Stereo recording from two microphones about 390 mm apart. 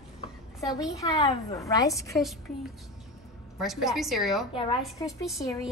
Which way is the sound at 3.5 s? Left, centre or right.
Centre.